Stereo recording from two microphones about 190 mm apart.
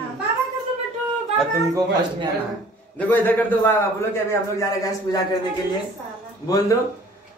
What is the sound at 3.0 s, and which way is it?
A man's voice, 10° left (ahead or behind).